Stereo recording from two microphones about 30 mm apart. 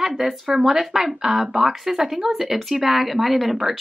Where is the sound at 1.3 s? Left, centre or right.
Right.